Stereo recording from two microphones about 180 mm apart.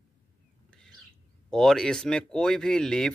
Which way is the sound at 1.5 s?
5° left (ahead or behind).